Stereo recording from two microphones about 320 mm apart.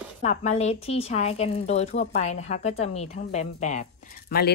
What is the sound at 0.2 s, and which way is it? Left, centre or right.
Speech, left.